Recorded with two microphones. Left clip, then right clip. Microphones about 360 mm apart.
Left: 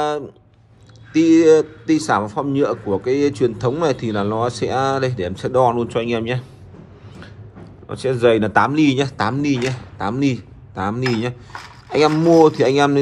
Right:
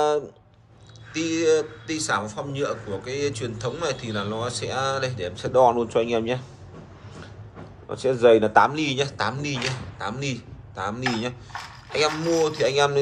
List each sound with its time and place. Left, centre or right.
1.1 s a man's voice: centre
7.9 s a man's voice: left
12.4 s a man's voice: centre